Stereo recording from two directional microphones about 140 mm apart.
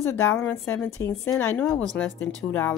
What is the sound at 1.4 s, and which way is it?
Speech, 10° left (ahead or behind).